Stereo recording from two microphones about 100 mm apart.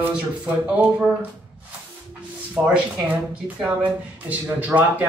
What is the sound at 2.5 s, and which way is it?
A man's voice, 15° right (ahead or behind).